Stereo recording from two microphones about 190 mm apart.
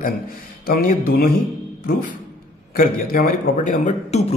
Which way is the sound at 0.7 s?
50° left (ahead or behind).